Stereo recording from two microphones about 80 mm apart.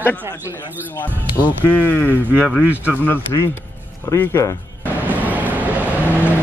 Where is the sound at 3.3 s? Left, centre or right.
Left.